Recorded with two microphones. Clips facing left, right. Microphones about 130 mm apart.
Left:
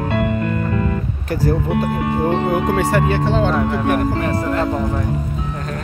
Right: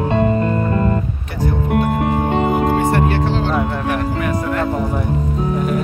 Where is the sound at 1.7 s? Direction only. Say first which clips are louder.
Right 2 dB; 50° right (ahead or behind).